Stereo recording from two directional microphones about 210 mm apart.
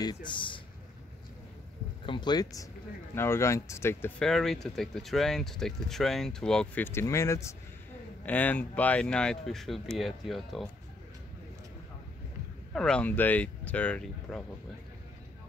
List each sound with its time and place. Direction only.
0.0 s speech: 20° left (ahead or behind)
2.0 s speech: 20° left (ahead or behind); by 10.7 s centre (ahead or behind)
12.7 s speech: 5° left (ahead or behind)